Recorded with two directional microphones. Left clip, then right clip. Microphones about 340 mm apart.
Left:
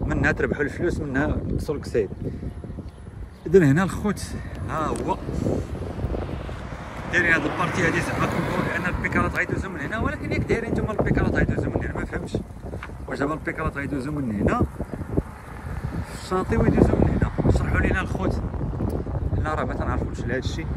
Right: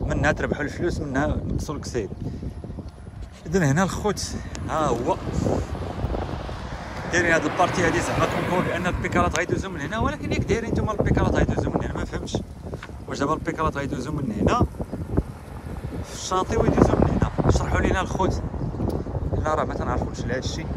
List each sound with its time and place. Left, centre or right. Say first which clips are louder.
0.1 s speech: even; centre
3.5 s speech: left 5 dB; centre
7.1 s speech: even; centre
16.3 s speech: right 1 dB; centre
17.2 s a sound: right 1 dB; centre
19.4 s speech: right 3 dB; centre